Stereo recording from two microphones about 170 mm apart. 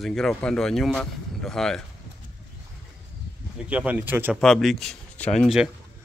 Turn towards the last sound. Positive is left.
turn(degrees=0)  # may be behind; listen again after turning